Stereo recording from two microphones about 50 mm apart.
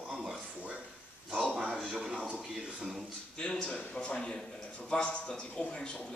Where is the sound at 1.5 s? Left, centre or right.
Centre.